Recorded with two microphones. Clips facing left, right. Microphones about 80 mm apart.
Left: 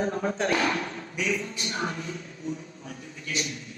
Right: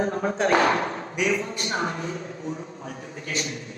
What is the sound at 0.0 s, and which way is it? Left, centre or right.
A man's voice, right.